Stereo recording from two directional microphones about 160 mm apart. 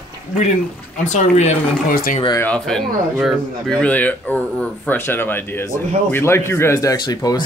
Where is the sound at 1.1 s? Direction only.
45° left (ahead or behind).